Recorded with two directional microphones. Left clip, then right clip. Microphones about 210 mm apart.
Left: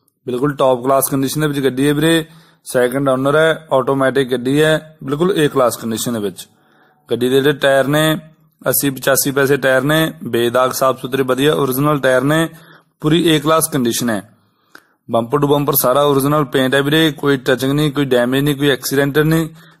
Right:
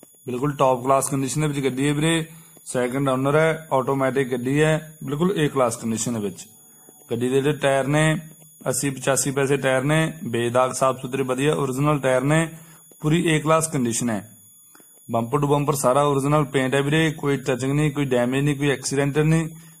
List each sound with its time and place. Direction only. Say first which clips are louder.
0.3 s a man's voice: left 6 dB; 25° left (ahead or behind)
7.1 s mantra: left 8 dB; 30° left (ahead or behind)
8.6 s a man's voice: left 8 dB; 25° left (ahead or behind)